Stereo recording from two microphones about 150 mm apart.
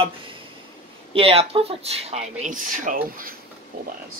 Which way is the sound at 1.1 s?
40° right (ahead or behind).